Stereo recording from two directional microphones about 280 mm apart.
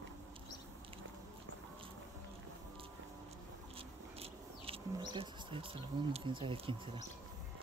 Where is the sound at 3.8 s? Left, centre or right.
Centre.